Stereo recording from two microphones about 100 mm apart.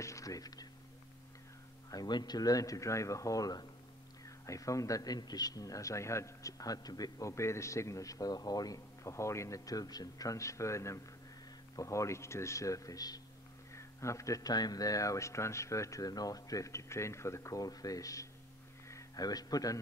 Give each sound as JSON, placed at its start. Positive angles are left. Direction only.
{"t": 0.0, "sound": "whispering", "side_deg": 35}
{"t": 1.9, "sound": "a man's voice", "side_deg": 45}